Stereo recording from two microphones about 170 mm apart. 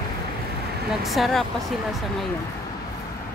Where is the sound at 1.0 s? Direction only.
Centre (ahead or behind).